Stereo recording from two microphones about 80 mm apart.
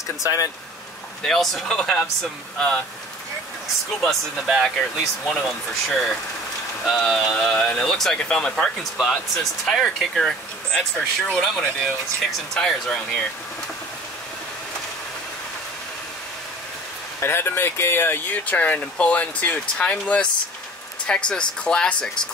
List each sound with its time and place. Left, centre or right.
0.2 s speech: left
1.2 s speech: centre
4.0 s speech: centre
6.8 s speech: centre
17.2 s speech: left; by 22.1 s centre